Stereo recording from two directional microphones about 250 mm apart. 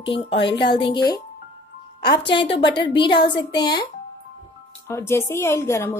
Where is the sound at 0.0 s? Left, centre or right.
Left.